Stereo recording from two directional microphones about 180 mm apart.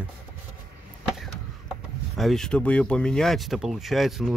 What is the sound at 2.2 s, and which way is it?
Speech, centre (ahead or behind).